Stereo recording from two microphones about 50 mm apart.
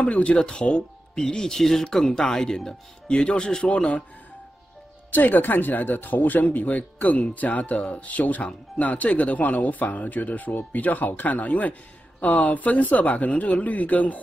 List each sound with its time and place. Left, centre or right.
0.0 s speech: left
5.1 s speech: left